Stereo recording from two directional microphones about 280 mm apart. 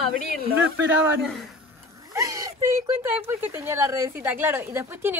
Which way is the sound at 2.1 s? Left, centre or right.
Centre.